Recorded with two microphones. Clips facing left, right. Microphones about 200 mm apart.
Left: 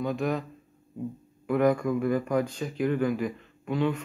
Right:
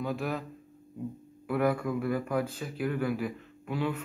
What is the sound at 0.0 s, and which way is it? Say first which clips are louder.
Speech: left 4 dB; 5° right (ahead or behind).